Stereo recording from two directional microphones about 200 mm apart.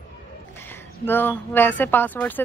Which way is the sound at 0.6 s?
10° left (ahead or behind).